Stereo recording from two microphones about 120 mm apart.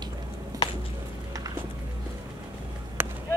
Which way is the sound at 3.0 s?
15° right (ahead or behind).